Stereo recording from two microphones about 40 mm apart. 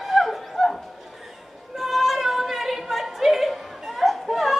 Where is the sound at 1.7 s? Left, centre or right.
Centre.